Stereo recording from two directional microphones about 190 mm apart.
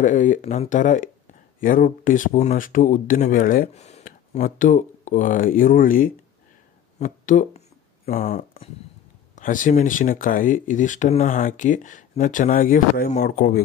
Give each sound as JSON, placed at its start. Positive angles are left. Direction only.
{"t": 0.0, "sound": "speech", "side_deg": 40}
{"t": 7.0, "sound": "a sound", "side_deg": 40}
{"t": 8.3, "sound": "speech", "side_deg": 45}